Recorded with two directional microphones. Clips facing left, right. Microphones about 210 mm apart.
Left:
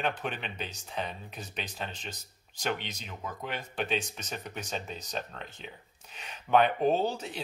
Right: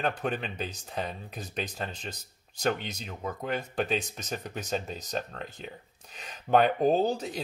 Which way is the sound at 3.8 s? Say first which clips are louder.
Even; 40° right (ahead or behind).